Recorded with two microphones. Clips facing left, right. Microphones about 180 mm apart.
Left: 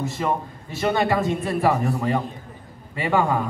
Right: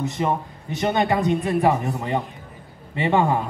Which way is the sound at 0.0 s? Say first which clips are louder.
Right 1 dB; 20° right (ahead or behind).